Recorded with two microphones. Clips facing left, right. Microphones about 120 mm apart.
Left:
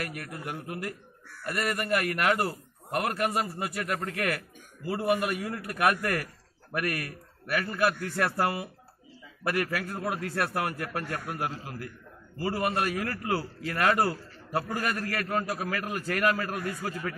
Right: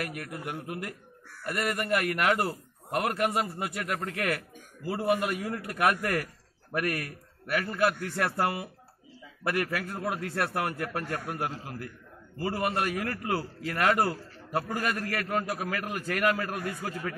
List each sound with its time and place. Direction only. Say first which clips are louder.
0.0 s a man's voice: right 1 dB; 20° right (ahead or behind)